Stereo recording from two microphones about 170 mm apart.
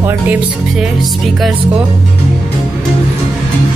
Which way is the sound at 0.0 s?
10° right (ahead or behind).